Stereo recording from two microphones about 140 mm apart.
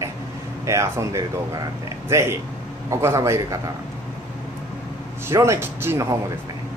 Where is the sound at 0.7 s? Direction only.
20° right (ahead or behind).